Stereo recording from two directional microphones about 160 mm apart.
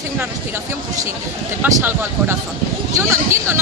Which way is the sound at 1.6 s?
15° right (ahead or behind).